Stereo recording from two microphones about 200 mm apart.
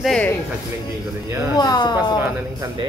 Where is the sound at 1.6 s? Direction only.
20° left (ahead or behind).